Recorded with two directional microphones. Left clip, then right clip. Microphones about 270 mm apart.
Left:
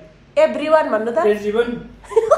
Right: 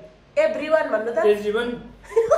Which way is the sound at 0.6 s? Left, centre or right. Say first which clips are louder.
Left 5 dB; centre.